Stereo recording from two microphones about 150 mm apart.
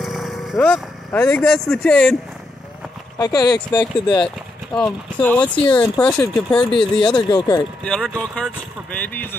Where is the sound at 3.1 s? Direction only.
25° left (ahead or behind).